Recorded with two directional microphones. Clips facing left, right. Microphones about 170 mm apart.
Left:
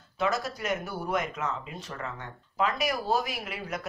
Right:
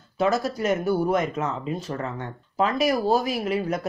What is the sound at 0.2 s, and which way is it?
Speech, 30° right (ahead or behind).